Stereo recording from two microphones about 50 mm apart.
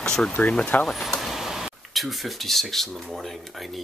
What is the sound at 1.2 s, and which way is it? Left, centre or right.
Speech, centre.